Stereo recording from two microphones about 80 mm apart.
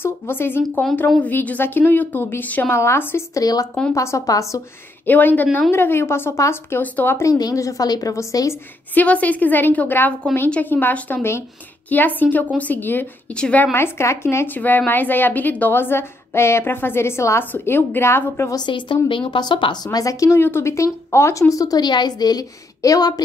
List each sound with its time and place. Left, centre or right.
0.0 s speech: left
2.7 s speech: left
3.3 s speech: left
3.9 s speech: left
5.0 s speech: left
7.3 s speech: left
8.9 s a woman's voice: centre
13.7 s speech: left
18.7 s a woman's voice: left
20.3 s speech: left